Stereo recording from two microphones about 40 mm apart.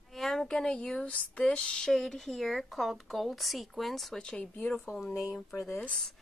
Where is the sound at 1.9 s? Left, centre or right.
Centre.